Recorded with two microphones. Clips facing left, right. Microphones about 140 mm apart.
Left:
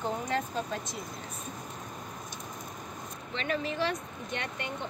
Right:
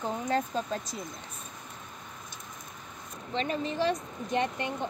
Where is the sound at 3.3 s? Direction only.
35° right (ahead or behind).